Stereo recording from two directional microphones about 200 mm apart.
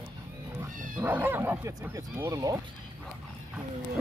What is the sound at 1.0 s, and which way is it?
Speech, 10° right (ahead or behind).